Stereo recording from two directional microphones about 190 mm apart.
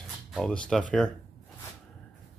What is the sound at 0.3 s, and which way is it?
Speech, 5° left (ahead or behind).